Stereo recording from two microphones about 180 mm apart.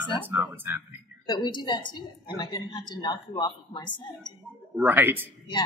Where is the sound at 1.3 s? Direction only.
25° left (ahead or behind).